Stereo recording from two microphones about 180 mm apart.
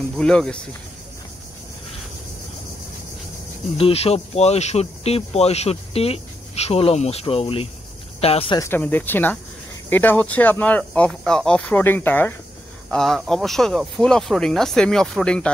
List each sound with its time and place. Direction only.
0.2 s speech: 5° left (ahead or behind)
3.7 s speech: 35° left (ahead or behind)
8.5 s speech: 10° left (ahead or behind)